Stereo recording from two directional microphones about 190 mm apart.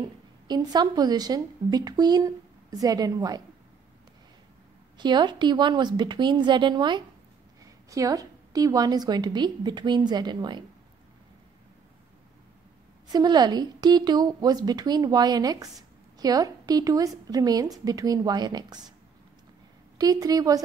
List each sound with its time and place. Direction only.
0.5 s a woman's voice: 20° right (ahead or behind)
4.9 s a woman's voice: 25° right (ahead or behind)
13.1 s a woman's voice: 20° right (ahead or behind)
20.0 s a woman's voice: 20° right (ahead or behind)